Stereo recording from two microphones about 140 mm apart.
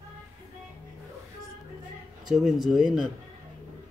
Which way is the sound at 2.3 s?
5° right (ahead or behind).